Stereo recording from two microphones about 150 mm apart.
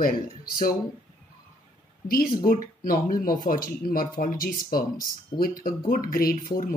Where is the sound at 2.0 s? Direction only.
75° left (ahead or behind).